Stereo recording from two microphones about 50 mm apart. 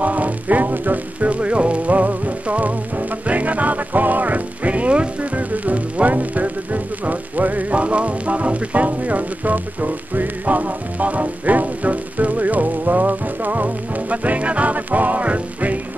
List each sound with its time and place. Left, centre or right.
0.0 s music: right